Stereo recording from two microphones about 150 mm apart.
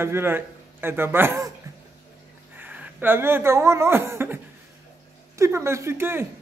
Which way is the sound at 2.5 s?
10° right (ahead or behind).